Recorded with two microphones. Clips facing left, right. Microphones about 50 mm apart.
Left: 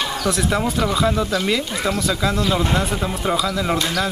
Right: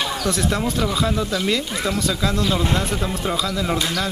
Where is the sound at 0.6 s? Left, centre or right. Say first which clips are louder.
Left 2 dB; centre.